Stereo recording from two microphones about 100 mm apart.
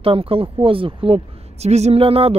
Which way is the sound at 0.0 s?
70° right (ahead or behind).